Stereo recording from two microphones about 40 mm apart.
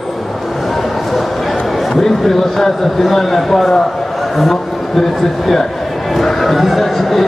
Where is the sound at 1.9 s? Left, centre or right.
Centre.